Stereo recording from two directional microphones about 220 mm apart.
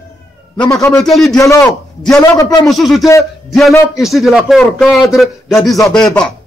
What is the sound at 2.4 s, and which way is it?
Speech, 15° left (ahead or behind).